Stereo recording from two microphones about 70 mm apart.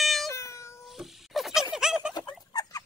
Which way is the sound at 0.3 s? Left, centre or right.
Left.